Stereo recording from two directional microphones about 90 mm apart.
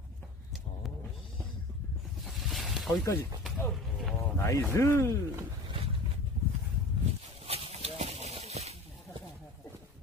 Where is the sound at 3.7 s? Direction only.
Centre (ahead or behind).